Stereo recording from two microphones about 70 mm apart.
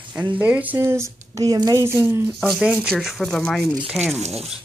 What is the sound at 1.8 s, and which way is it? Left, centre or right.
Speech, right.